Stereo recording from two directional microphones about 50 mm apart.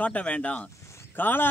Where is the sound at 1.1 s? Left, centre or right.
Left.